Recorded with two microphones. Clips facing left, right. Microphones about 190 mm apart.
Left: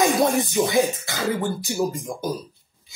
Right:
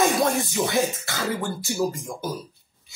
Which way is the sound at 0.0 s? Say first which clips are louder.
Left 2 dB; 15° left (ahead or behind).